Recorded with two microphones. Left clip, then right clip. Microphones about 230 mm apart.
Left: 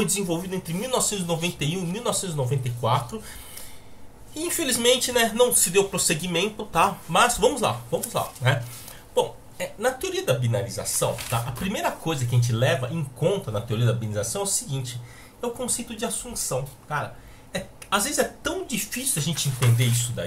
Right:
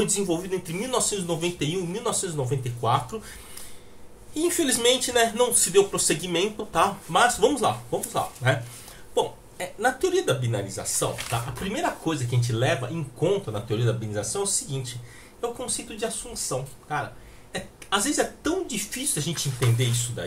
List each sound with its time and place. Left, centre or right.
0.0 s speech: centre
4.3 s a woman's voice: centre